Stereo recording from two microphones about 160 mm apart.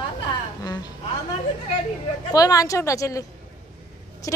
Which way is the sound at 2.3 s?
20° left (ahead or behind).